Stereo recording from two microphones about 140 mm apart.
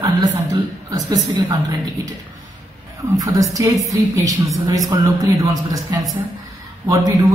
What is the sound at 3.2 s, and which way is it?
Speech, 25° right (ahead or behind).